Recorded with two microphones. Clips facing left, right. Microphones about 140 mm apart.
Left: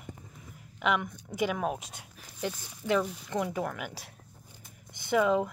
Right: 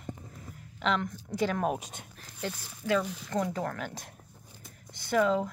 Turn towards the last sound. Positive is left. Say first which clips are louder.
# left 1 dB
turn(degrees=15)  # may be behind; listen again after turning